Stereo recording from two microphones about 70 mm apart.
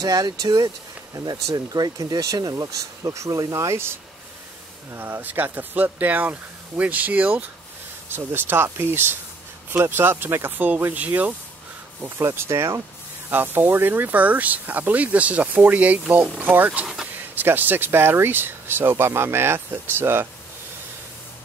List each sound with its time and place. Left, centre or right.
0.0 s speech: right
12.2 s speech: right
13.3 s speech: right
16.8 s speech: centre
17.4 s speech: right